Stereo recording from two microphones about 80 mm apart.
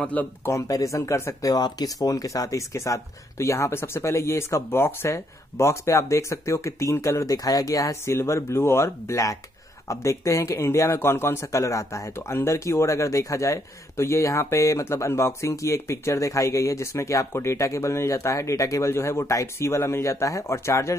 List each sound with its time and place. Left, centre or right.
0.0 s speech: centre
0.5 s speech: left
1.5 s speech: left
8.0 s speech: left